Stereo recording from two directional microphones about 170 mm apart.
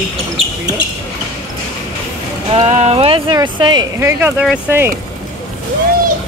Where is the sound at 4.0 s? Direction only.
15° right (ahead or behind).